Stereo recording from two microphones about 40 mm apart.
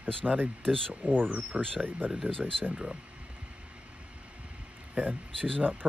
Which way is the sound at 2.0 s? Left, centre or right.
Right.